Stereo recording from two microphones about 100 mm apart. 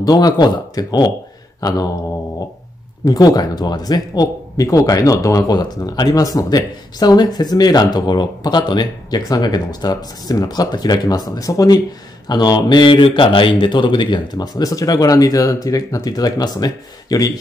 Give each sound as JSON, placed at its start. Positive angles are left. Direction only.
{"t": 0.0, "sound": "speech", "side_deg": 40}
{"t": 1.6, "sound": "mantra", "side_deg": 40}
{"t": 3.1, "sound": "speech", "side_deg": 40}